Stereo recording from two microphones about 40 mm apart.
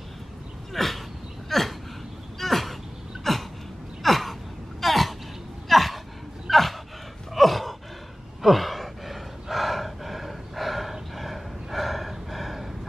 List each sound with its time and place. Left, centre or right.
0.7 s a sound: centre
4.0 s gasp: centre
5.7 s a sound: centre
6.5 s dog: centre
7.3 s sigh: centre
8.4 s gasp: centre